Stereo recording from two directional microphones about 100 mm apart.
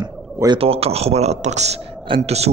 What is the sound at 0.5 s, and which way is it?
Speech, 75° right (ahead or behind).